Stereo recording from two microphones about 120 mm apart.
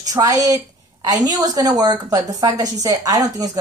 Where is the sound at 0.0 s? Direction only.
30° right (ahead or behind).